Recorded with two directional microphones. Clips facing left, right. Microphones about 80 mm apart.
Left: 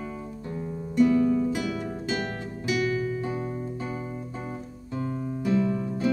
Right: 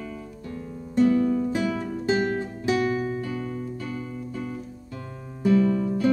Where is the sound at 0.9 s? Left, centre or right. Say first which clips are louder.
Even; right.